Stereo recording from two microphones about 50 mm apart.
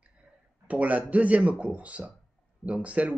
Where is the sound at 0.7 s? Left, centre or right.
Right.